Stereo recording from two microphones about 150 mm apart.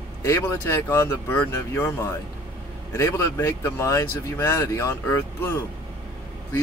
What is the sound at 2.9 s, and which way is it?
Speech, 20° left (ahead or behind).